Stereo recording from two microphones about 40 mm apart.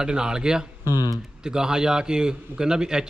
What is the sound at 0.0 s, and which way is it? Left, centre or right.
A man's voice, centre.